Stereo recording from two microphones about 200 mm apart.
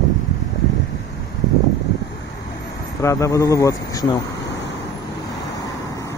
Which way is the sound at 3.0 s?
15° left (ahead or behind).